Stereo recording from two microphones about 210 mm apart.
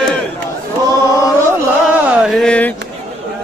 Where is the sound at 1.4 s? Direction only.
10° right (ahead or behind).